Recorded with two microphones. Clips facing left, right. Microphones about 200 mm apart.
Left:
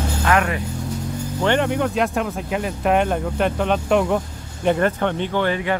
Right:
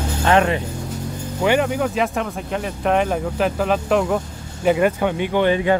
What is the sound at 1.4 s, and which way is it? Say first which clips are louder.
Speech: right 1 dB; 5° right (ahead or behind).